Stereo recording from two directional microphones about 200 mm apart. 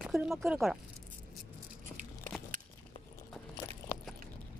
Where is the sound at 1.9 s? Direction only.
15° left (ahead or behind).